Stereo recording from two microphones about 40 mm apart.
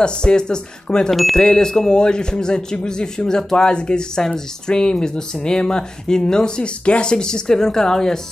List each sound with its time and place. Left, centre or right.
0.0 s speech: left